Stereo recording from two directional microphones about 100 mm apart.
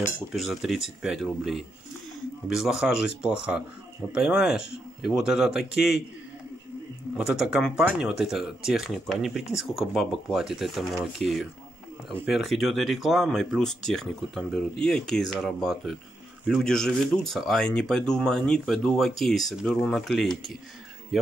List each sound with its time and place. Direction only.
0.3 s speech: centre (ahead or behind)
7.2 s speech: 5° right (ahead or behind)